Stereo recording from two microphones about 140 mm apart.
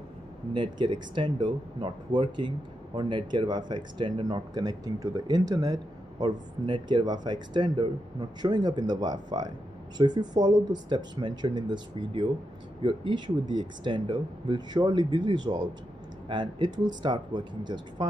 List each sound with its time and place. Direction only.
0.5 s speech: 35° right (ahead or behind)